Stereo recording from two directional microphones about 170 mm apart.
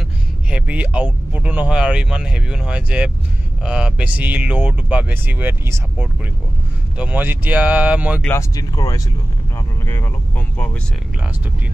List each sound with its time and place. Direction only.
0.5 s speech: 5° right (ahead or behind)
8.2 s speech: 15° left (ahead or behind)